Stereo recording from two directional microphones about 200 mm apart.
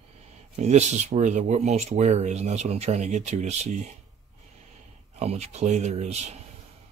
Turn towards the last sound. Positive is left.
turn(degrees=-35)  # may be behind; listen again after turning